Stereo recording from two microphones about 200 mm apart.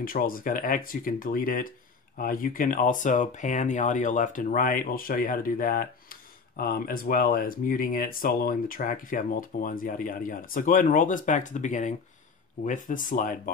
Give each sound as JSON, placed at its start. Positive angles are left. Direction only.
{"t": 0.0, "sound": "speech", "side_deg": 45}